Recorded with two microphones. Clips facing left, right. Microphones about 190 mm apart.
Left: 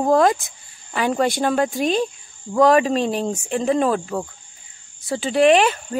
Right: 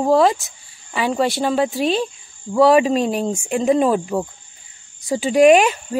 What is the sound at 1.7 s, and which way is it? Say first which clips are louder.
Speech: right 1 dB; 45° left (ahead or behind).